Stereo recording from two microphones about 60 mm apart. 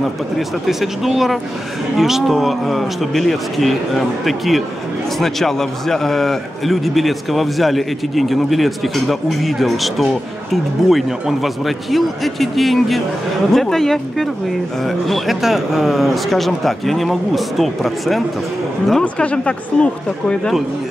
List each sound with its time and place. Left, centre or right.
0.4 s a man's voice: centre
19.2 s speech: centre